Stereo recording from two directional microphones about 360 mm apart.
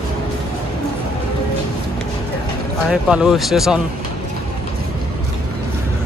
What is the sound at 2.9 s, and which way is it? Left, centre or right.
Speech, centre.